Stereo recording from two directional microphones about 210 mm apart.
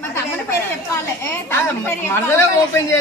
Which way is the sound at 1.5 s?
10° left (ahead or behind).